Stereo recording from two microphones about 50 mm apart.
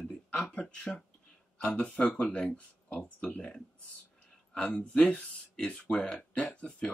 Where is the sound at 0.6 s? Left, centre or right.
Left.